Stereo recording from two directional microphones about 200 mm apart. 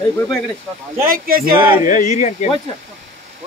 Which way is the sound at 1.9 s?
40° left (ahead or behind).